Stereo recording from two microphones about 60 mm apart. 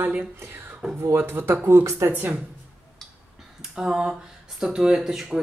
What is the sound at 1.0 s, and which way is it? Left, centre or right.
Speech, right.